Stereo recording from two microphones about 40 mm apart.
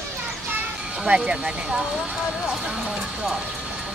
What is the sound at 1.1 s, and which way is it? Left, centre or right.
Speech, right.